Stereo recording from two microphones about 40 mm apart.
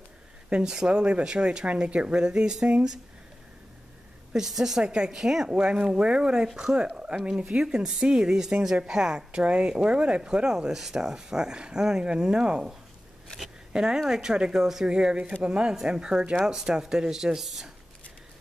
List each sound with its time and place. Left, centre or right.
0.5 s speech: right
1.7 s speech: right
4.3 s speech: centre
4.8 s speech: right
5.1 s speech: centre
5.5 s speech: right
10.2 s speech: centre
13.7 s speech: centre